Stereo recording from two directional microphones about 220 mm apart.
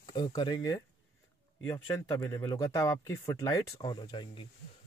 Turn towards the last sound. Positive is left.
turn(degrees=20)  # may be behind; listen again after turning